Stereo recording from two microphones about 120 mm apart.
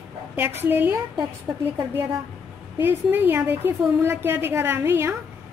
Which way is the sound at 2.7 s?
15° right (ahead or behind).